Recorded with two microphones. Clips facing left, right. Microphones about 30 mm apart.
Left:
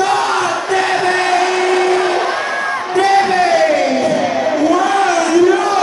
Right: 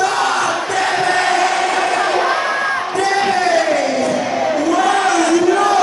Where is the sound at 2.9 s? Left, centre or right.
Centre.